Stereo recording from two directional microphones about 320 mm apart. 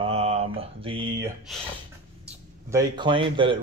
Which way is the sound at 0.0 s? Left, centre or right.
Centre.